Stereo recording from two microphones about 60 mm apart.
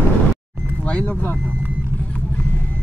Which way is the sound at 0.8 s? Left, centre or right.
Left.